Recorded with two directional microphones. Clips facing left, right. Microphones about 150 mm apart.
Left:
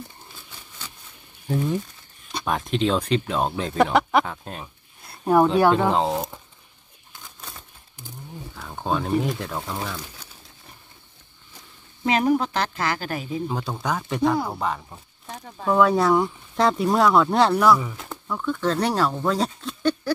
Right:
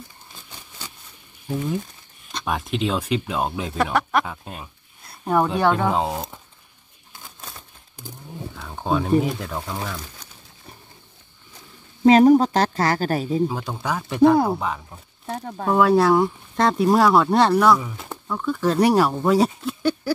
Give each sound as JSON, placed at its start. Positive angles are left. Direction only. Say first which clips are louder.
{"t": 2.4, "sound": "speech", "louder": "left 1 dB", "side_deg": -5}
{"t": 3.7, "sound": "speech", "louder": "left 3 dB", "side_deg": 15}
{"t": 4.3, "sound": "speech", "louder": "left 1 dB", "side_deg": -5}
{"t": 8.5, "sound": "speech", "louder": "right 2 dB", "side_deg": 0}
{"t": 12.0, "sound": "a woman's voice", "louder": "right 8 dB", "side_deg": -35}
{"t": 13.5, "sound": "speech", "louder": "even", "side_deg": 0}
{"t": 15.2, "sound": "speech", "louder": "right 3 dB", "side_deg": -55}
{"t": 15.7, "sound": "speech", "louder": "right 2 dB", "side_deg": -5}